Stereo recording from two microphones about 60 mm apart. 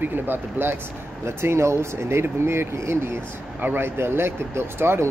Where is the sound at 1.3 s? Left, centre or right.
Right.